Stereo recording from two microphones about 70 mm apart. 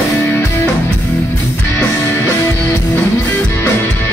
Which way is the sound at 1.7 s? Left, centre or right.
Left.